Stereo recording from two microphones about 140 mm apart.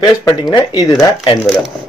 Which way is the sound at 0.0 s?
25° left (ahead or behind).